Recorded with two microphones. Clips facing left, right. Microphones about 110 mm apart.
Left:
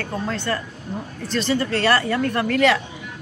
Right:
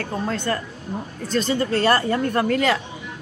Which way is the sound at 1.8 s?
30° right (ahead or behind).